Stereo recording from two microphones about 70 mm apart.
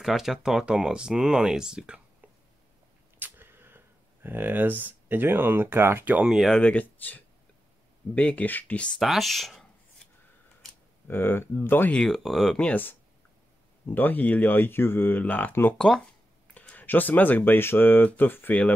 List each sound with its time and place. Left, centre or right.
0.0 s speech: centre
3.2 s a sound: right
6.2 s speech: centre
6.5 s speech: centre
9.0 s speech: centre
11.1 s speech: left
11.9 s speech: centre
13.8 s speech: left
15.9 s speech: centre
16.5 s speech: left